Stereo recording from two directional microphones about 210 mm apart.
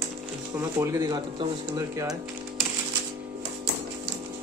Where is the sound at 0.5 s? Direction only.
15° right (ahead or behind).